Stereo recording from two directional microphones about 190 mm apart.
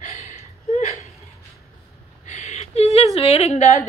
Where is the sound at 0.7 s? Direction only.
35° left (ahead or behind).